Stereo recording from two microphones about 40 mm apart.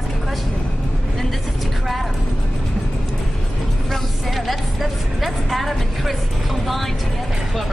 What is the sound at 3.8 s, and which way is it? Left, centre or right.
Speech, centre.